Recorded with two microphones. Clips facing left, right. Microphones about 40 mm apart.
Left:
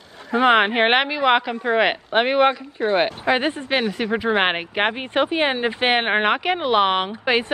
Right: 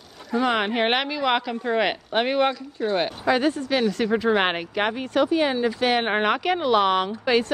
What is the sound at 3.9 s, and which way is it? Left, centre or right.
Speech, left.